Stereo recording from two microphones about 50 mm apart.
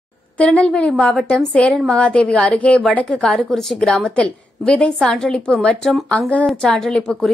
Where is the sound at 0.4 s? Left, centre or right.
Left.